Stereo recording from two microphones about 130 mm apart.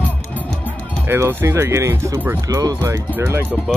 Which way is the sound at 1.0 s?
20° right (ahead or behind).